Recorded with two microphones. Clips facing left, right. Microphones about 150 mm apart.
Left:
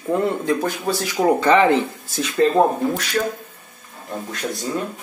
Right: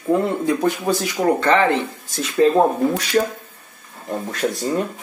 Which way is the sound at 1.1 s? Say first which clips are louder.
Left 3 dB; 15° left (ahead or behind).